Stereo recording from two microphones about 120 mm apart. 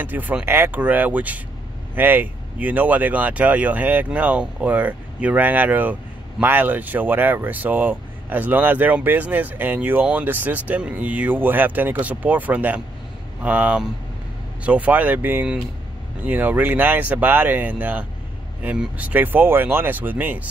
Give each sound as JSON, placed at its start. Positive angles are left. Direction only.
{"t": 0.0, "sound": "speech", "side_deg": -15}